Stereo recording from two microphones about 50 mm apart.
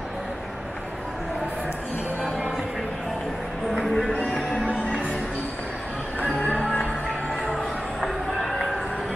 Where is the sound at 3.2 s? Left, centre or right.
Centre.